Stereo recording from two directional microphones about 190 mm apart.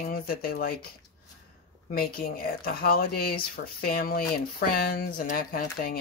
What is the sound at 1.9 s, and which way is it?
Speech, 50° left (ahead or behind).